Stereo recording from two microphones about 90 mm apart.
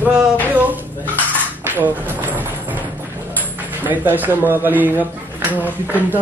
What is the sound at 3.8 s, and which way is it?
Speech, 20° right (ahead or behind).